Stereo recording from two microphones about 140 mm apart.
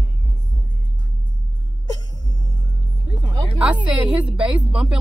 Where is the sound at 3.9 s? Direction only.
10° right (ahead or behind).